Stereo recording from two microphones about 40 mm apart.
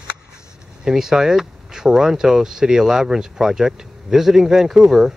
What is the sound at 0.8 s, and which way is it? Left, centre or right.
Speech, centre.